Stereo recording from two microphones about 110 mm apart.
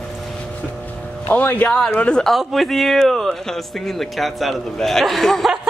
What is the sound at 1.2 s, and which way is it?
Speech, 20° left (ahead or behind).